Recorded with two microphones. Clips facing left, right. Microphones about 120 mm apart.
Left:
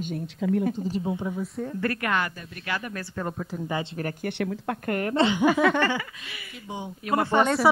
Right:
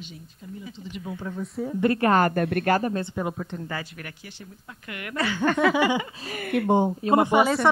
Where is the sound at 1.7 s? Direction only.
20° right (ahead or behind).